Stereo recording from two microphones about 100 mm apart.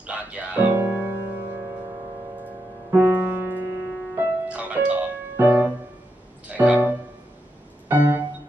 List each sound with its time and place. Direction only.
0.0 s music: 15° right (ahead or behind)
2.9 s music: 20° right (ahead or behind)